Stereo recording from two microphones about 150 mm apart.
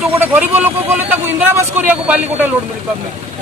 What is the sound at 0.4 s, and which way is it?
Speech, 10° right (ahead or behind).